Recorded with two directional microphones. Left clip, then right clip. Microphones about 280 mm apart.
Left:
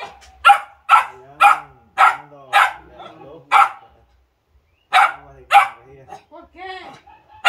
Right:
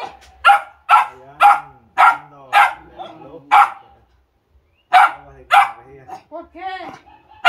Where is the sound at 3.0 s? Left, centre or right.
Right.